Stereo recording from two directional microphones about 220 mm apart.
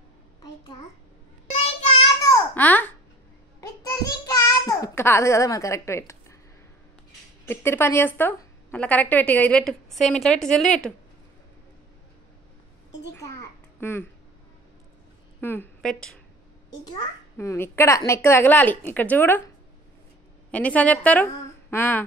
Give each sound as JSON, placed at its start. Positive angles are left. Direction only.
{"t": 1.5, "sound": "child singing", "side_deg": 30}
{"t": 2.2, "sound": "babbling", "side_deg": 10}
{"t": 3.6, "sound": "child singing", "side_deg": 15}
{"t": 7.4, "sound": "a woman's voice", "side_deg": 10}
{"t": 13.1, "sound": "a sound", "side_deg": 10}
{"t": 15.4, "sound": "a woman's voice", "side_deg": 10}
{"t": 16.8, "sound": "a woman's voice", "side_deg": 15}
{"t": 20.5, "sound": "a woman's voice", "side_deg": 5}